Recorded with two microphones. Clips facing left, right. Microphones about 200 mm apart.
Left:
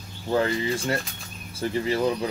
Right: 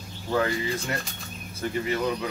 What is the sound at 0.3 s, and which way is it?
Speech, 30° left (ahead or behind).